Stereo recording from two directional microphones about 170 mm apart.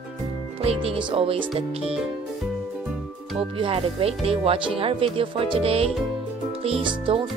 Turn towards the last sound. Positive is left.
turn(degrees=-30)  # may be behind; listen again after turning